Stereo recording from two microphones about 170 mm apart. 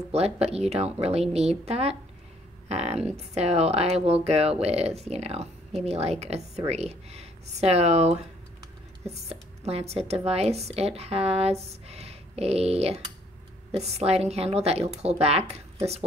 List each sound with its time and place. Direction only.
0.1 s speech: 40° right (ahead or behind)